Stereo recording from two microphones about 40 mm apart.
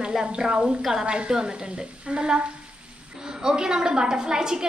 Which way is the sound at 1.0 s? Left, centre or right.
Right.